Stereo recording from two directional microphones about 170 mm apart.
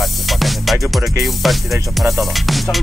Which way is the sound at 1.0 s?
15° right (ahead or behind).